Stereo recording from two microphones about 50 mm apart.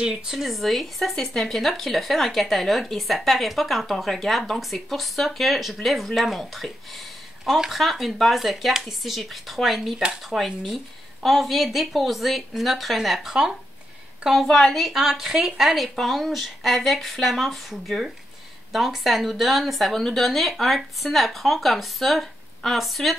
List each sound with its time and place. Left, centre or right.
0.0 s speech: centre
0.4 s speech: centre
14.5 s a woman's voice: centre
14.8 s speech: centre